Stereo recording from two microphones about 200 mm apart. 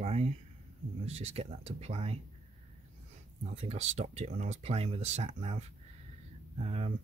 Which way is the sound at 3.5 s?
35° right (ahead or behind).